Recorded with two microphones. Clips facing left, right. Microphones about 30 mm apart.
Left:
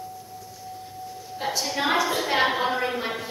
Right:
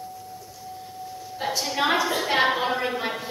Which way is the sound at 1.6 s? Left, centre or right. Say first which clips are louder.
Right 1 dB; centre.